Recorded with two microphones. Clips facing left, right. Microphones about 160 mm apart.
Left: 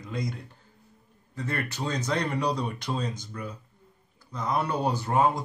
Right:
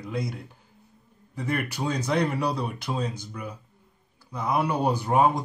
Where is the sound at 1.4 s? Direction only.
10° right (ahead or behind).